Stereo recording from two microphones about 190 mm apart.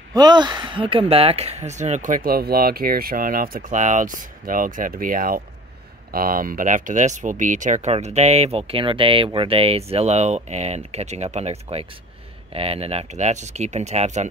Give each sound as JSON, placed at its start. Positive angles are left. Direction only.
{"t": 0.1, "sound": "speech", "side_deg": -20}